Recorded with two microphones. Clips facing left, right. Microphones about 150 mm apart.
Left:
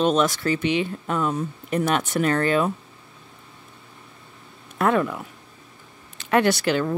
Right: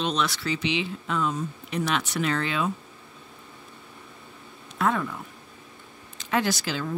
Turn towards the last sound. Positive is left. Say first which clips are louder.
# left 7 dB
turn(degrees=60)  # may be behind; listen again after turning